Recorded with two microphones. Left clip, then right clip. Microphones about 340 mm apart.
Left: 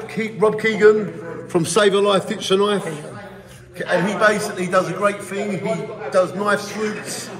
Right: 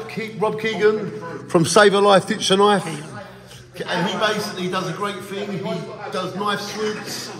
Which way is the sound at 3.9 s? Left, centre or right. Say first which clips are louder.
Left 4 dB; centre.